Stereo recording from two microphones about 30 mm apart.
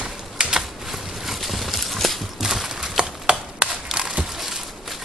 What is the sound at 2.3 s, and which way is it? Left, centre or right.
Horse, centre.